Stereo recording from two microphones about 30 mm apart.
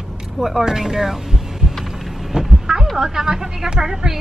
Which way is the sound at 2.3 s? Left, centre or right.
Right.